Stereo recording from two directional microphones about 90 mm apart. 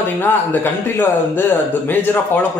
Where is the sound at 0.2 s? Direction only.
20° left (ahead or behind).